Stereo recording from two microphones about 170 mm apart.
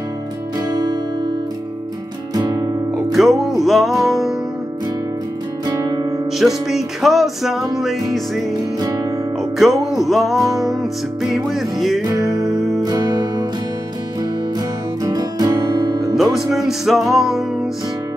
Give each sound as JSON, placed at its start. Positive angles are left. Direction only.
{"t": 3.1, "sound": "music", "side_deg": 0}
{"t": 5.7, "sound": "music", "side_deg": -20}
{"t": 6.3, "sound": "music", "side_deg": 0}
{"t": 9.6, "sound": "music", "side_deg": 0}
{"t": 12.1, "sound": "music", "side_deg": -20}
{"t": 15.0, "sound": "music", "side_deg": -25}
{"t": 16.3, "sound": "music", "side_deg": 0}